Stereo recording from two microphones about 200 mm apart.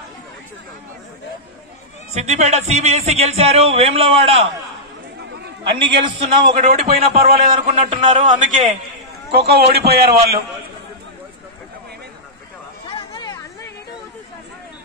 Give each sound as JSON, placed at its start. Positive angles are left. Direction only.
{"t": 2.1, "sound": "speech", "side_deg": -35}
{"t": 5.2, "sound": "chatter", "side_deg": -60}
{"t": 5.7, "sound": "a man's voice", "side_deg": -25}
{"t": 6.6, "sound": "speech", "side_deg": -40}
{"t": 9.5, "sound": "a man's voice", "side_deg": -50}
{"t": 12.8, "sound": "a sound", "side_deg": 25}